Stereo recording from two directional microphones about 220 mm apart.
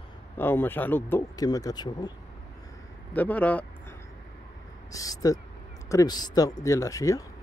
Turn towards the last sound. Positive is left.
turn(degrees=15)  # may be behind; listen again after turning